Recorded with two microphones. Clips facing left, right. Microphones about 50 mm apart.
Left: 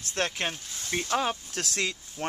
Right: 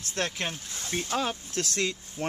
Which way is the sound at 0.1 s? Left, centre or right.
Centre.